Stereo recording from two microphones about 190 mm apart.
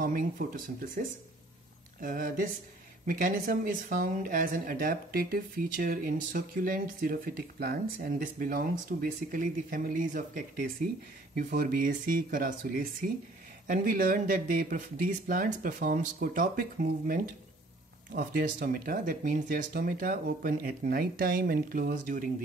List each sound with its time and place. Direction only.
0.0 s speech: 45° right (ahead or behind)